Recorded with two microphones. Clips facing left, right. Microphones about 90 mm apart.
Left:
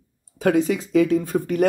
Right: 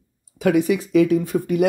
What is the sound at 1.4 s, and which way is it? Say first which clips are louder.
Speech: right 1 dB; 45° left (ahead or behind).